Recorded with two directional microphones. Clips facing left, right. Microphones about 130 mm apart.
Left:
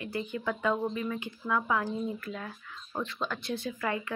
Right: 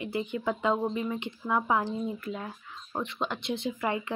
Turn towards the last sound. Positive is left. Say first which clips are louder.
# right 2 dB
turn(degrees=-20)  # may be behind; listen again after turning